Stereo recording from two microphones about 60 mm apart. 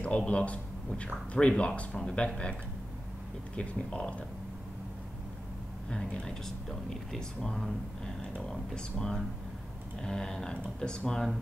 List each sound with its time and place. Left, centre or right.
0.0 s a man's voice: centre
3.5 s speech: centre
5.9 s speech: centre